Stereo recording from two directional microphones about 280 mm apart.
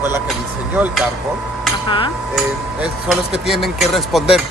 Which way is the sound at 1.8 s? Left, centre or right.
Centre.